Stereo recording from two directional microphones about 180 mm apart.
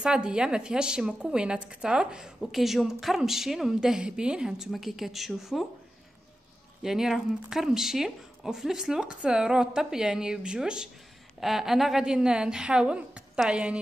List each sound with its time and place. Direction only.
0.0 s a woman's voice: 5° right (ahead or behind)
6.8 s a woman's voice: centre (ahead or behind)